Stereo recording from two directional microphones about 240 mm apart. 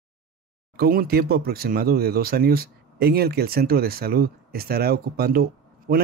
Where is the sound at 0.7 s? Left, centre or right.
Right.